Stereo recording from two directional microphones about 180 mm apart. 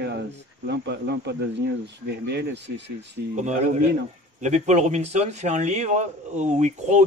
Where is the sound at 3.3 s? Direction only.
40° right (ahead or behind).